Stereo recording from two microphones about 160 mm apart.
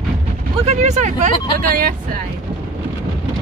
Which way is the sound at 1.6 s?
60° right (ahead or behind).